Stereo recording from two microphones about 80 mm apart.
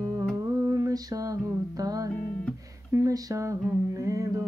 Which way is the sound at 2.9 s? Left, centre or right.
Right.